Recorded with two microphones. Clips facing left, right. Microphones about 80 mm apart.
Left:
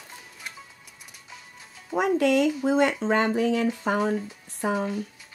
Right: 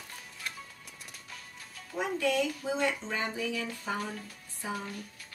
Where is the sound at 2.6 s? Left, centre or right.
Left.